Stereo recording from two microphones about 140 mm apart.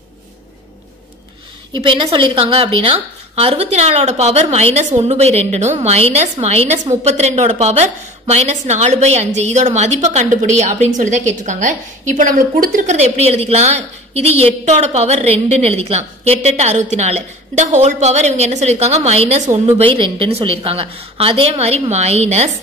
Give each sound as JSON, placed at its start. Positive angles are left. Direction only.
{"t": 1.7, "sound": "a woman's voice", "side_deg": -40}
{"t": 6.8, "sound": "a woman's voice", "side_deg": -35}
{"t": 7.1, "sound": "a woman's voice", "side_deg": -50}
{"t": 13.1, "sound": "a woman's voice", "side_deg": -50}
{"t": 19.8, "sound": "a woman's voice", "side_deg": -40}